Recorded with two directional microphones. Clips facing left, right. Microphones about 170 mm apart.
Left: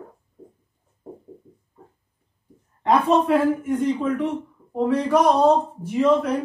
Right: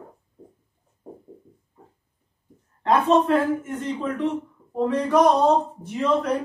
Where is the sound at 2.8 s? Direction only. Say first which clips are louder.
Even; 10° left (ahead or behind).